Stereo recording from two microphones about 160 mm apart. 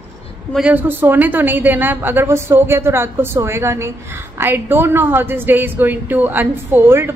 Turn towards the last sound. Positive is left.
turn(degrees=-15)  # may be behind; listen again after turning